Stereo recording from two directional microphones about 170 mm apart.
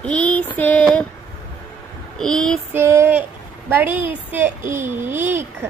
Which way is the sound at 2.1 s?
5° left (ahead or behind).